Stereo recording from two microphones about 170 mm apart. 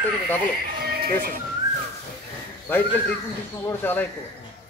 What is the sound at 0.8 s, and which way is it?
Music, 60° right (ahead or behind).